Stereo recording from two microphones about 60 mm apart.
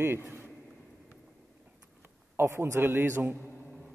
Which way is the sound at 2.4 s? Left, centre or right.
Right.